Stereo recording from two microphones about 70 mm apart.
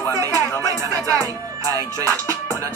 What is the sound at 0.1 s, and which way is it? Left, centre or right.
Music, right.